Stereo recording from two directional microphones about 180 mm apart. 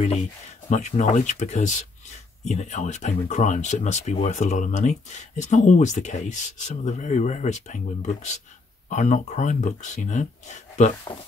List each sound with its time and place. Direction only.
0.7 s speech: 40° left (ahead or behind)
11.1 s speech: 30° left (ahead or behind)